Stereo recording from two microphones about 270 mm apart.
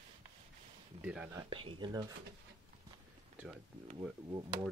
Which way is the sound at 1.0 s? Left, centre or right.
Centre.